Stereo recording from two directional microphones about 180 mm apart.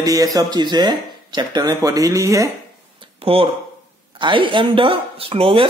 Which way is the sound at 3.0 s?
30° right (ahead or behind).